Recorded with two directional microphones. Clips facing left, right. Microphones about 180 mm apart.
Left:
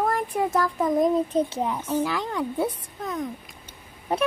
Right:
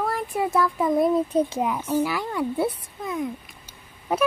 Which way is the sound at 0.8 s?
10° right (ahead or behind).